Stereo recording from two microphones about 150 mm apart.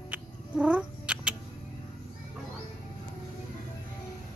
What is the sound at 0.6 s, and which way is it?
Cat, 10° right (ahead or behind).